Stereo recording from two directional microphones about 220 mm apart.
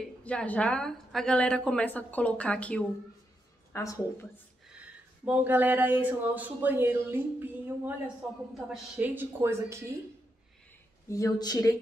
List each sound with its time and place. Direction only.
0.0 s a woman's voice: 5° left (ahead or behind)
5.2 s speech: 5° right (ahead or behind)
11.1 s speech: 15° left (ahead or behind)